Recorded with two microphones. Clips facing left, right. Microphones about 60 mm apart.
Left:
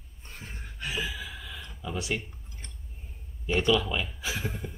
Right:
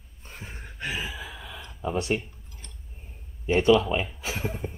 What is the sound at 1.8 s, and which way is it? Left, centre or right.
Speech, right.